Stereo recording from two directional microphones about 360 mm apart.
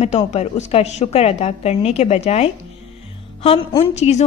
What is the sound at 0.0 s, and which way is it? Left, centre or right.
A woman's voice, centre.